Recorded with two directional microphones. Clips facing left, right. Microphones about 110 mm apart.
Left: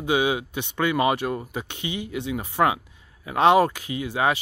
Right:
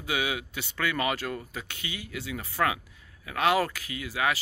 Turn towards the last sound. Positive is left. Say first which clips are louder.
# left 6 dB
turn(degrees=25)  # may be behind; listen again after turning